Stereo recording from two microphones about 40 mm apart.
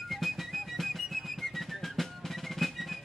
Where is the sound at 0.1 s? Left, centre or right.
Centre.